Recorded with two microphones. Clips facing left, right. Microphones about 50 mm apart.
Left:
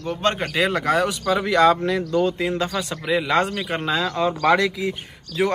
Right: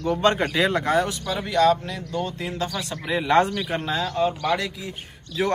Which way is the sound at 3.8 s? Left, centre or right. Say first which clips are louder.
Left 2 dB; left.